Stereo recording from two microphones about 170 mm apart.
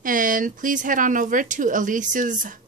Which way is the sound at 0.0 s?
55° right (ahead or behind).